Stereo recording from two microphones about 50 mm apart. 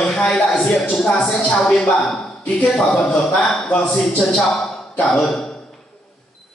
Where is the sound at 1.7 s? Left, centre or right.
Centre.